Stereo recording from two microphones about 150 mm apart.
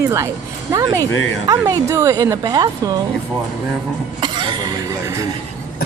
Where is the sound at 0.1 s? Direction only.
20° right (ahead or behind).